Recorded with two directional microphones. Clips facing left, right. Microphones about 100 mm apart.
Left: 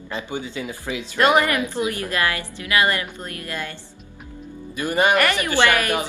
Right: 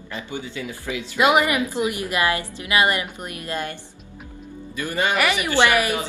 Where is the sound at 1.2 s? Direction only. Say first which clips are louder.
Even; 10° right (ahead or behind).